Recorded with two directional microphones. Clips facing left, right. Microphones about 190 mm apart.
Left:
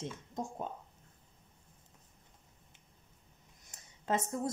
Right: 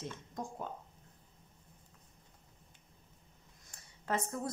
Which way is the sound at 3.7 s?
20° left (ahead or behind).